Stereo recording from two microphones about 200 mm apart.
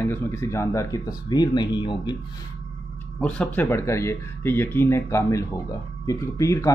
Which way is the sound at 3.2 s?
5° left (ahead or behind).